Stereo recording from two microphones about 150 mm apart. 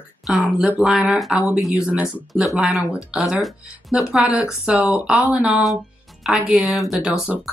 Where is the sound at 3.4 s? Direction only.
5° right (ahead or behind).